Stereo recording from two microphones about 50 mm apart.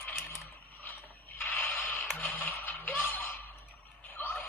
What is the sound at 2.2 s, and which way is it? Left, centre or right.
Music, left.